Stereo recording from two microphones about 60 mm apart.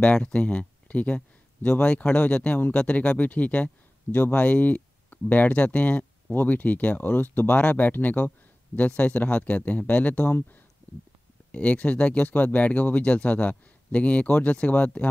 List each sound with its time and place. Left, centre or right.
0.0 s speech: centre
11.5 s speech: left